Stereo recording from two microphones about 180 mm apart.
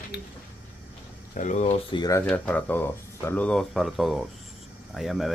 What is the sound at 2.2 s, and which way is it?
Speech, 5° left (ahead or behind).